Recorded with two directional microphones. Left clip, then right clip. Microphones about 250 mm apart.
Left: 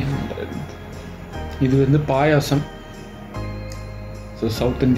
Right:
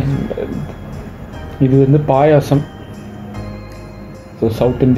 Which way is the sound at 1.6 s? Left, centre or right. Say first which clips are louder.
Right 6 dB; centre.